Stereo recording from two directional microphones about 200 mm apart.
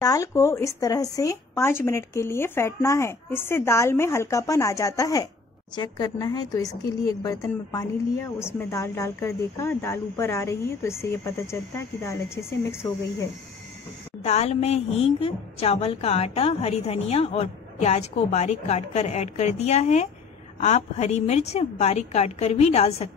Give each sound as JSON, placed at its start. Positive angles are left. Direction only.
{"t": 0.0, "sound": "speech", "side_deg": 15}
{"t": 14.2, "sound": "a woman's voice", "side_deg": 35}